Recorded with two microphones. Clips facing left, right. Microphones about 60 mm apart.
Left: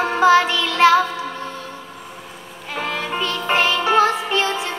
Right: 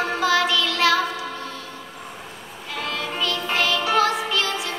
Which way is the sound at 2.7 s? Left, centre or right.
Left.